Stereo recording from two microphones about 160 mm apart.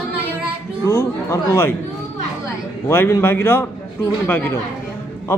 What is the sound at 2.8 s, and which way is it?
A man's voice, 15° left (ahead or behind).